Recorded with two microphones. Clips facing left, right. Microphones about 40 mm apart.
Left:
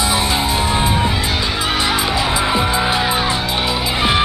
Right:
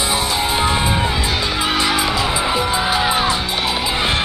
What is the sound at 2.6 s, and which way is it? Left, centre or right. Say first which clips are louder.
Music: left 1 dB; centre.